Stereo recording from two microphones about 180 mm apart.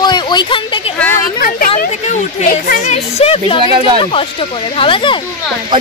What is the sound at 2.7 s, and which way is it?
Speech, 40° left (ahead or behind).